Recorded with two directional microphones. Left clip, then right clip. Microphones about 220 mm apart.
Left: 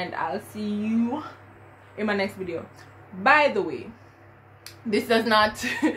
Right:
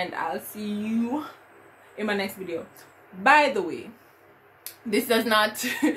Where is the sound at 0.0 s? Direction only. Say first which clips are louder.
Even; centre (ahead or behind).